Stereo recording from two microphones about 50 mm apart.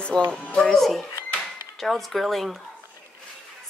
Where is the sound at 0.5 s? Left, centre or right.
Centre.